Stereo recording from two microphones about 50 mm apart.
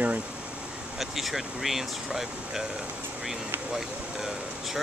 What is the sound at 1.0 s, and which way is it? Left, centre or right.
Speech, centre.